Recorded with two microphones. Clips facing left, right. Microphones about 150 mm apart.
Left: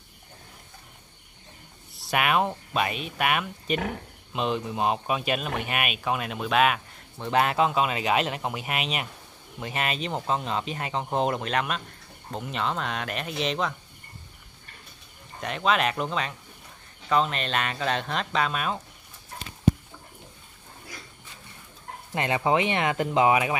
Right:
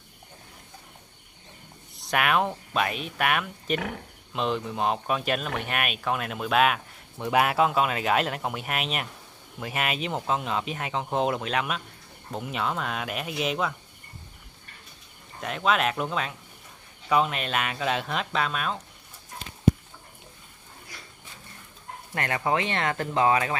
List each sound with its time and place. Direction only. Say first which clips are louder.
2.0 s speech: even; 5° left (ahead or behind)
15.4 s speech: even; centre (ahead or behind)
22.1 s speech: left 3 dB; 20° left (ahead or behind)